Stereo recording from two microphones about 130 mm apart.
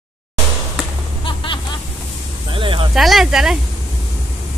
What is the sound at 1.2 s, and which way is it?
Vehicle, 40° left (ahead or behind).